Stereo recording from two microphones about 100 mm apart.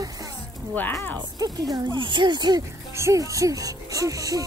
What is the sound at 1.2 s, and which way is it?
Speech, 40° right (ahead or behind).